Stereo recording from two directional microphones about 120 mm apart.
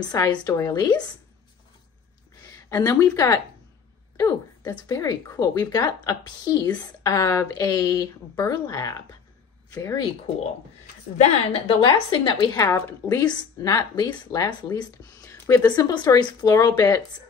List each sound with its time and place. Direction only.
0.1 s speech: 35° left (ahead or behind)
2.7 s speech: 30° left (ahead or behind)
11.1 s a woman's voice: 60° left (ahead or behind)
11.8 s speech: 40° left (ahead or behind)
12.5 s a woman's voice: 15° left (ahead or behind)
13.0 s speech: 30° left (ahead or behind)